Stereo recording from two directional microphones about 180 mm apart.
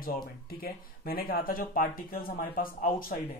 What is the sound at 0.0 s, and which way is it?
Speech, 55° left (ahead or behind).